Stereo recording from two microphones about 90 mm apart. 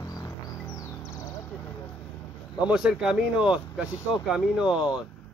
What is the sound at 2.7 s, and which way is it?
Speech, 10° right (ahead or behind).